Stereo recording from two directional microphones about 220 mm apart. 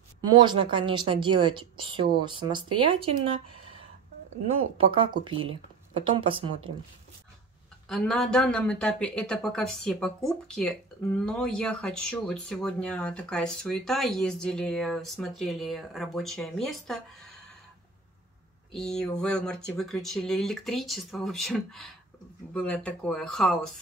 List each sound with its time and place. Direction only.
0.3 s speech: 20° right (ahead or behind)
4.7 s speech: 25° right (ahead or behind)
7.9 s speech: 5° left (ahead or behind)
18.7 s speech: 5° left (ahead or behind)